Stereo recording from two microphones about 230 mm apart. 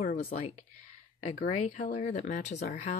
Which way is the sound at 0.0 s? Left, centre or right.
Left.